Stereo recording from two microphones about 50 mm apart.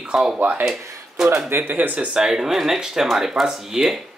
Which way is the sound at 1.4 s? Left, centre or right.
Right.